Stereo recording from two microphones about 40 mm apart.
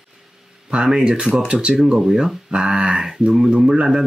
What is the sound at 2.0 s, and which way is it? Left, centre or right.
Speech, centre.